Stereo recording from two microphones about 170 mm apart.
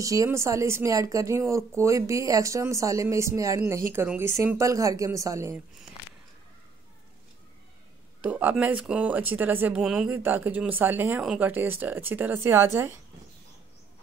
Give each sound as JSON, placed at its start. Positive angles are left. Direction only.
{"t": 0.0, "sound": "speech", "side_deg": -20}
{"t": 8.2, "sound": "speech", "side_deg": -10}